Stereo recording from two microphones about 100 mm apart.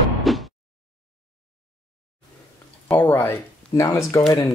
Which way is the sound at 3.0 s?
25° left (ahead or behind).